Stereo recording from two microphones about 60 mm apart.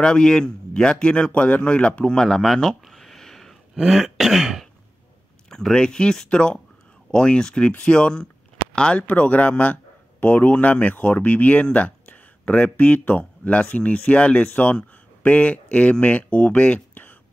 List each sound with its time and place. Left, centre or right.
0.0 s a man's voice: centre
2.2 s a sound: centre
3.7 s throat clearing: centre
5.5 s a man's voice: centre; by 17.2 s left